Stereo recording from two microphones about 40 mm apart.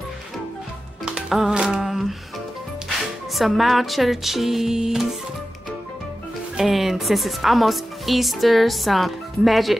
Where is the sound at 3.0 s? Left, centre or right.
Centre.